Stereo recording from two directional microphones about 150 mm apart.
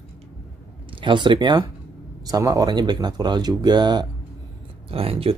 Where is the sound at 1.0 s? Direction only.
30° right (ahead or behind).